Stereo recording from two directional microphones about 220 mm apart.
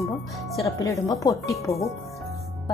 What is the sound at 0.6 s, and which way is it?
Speech, 15° left (ahead or behind).